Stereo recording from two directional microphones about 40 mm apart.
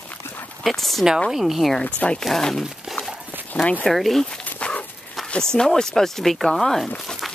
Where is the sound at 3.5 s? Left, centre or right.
Left.